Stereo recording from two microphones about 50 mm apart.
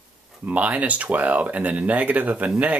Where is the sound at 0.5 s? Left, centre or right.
Right.